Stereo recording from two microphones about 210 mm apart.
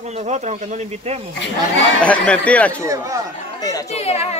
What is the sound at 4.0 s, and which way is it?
Speech, 30° left (ahead or behind).